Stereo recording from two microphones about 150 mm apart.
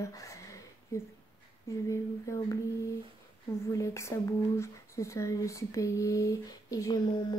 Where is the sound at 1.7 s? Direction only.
20° left (ahead or behind).